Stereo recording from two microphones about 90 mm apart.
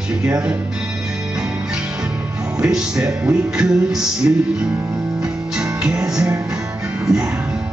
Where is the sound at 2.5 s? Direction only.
10° right (ahead or behind).